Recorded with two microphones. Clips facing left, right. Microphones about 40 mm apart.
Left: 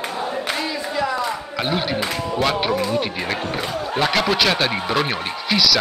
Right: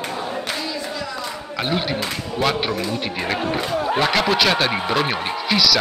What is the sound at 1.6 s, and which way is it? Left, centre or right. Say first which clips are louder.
Speech: even; centre.